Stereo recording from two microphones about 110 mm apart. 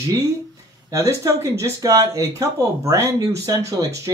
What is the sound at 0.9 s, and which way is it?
Speech, 25° right (ahead or behind).